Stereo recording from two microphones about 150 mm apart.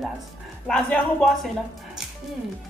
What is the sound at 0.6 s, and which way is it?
Speech, 5° left (ahead or behind).